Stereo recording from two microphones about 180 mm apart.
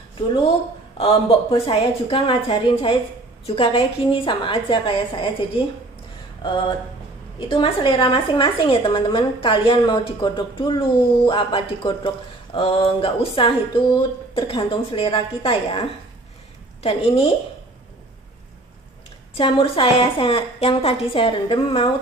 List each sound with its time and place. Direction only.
0.9 s a woman's voice: 35° left (ahead or behind)
7.3 s a woman's voice: 30° left (ahead or behind)
19.3 s a woman's voice: 30° left (ahead or behind)